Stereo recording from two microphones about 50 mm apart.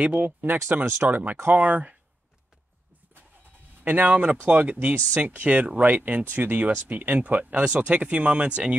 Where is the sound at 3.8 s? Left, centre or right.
Right.